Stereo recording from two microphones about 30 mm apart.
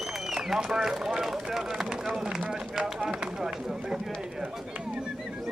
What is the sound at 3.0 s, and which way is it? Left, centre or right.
Run, centre.